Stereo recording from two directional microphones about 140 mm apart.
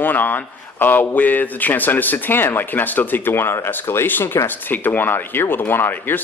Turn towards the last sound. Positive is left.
turn(degrees=15)  # may be behind; listen again after turning